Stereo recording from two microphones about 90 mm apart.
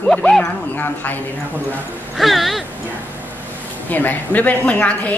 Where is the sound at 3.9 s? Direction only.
20° left (ahead or behind).